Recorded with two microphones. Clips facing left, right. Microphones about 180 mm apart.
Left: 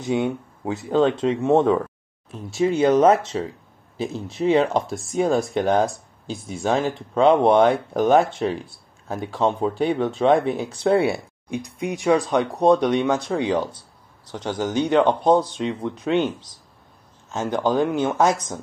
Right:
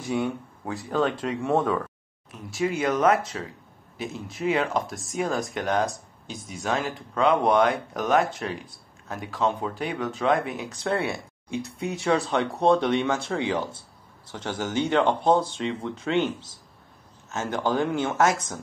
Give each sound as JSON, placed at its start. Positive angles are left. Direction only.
{"t": 0.0, "sound": "speech", "side_deg": 20}
{"t": 11.5, "sound": "speech", "side_deg": 15}